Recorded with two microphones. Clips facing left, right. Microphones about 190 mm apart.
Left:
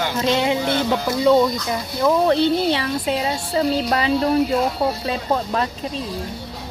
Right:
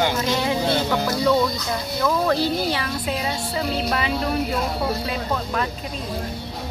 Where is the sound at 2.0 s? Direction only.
25° left (ahead or behind).